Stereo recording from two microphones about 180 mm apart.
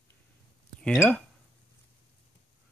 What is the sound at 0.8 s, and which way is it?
Speech, 5° left (ahead or behind).